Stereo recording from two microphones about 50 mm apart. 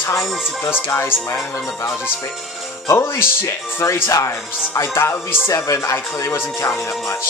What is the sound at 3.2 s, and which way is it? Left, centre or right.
Speech, left.